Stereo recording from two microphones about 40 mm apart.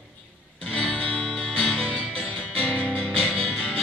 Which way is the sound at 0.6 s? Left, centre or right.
Left.